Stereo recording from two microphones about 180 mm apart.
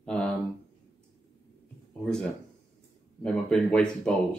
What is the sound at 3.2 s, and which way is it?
Speech, 5° left (ahead or behind).